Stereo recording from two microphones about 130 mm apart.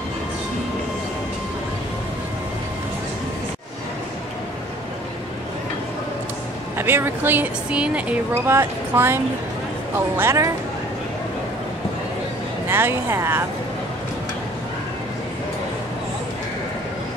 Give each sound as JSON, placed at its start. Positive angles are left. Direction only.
{"t": 6.8, "sound": "speech", "side_deg": -15}
{"t": 12.6, "sound": "speech", "side_deg": -20}